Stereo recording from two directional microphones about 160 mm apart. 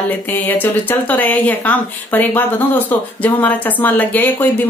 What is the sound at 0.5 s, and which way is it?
A woman's voice, 10° left (ahead or behind).